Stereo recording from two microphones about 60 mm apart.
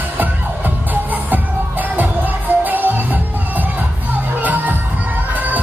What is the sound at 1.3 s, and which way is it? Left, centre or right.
Music, right.